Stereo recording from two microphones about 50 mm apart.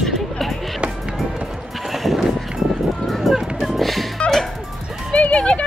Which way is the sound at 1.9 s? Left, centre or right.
Centre.